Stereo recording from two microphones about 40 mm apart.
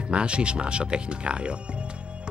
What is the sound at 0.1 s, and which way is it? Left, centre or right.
Speech, right.